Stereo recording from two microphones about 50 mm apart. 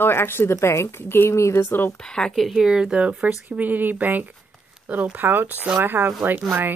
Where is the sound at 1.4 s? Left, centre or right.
Left.